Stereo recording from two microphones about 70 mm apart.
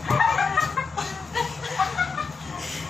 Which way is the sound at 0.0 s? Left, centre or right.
Centre.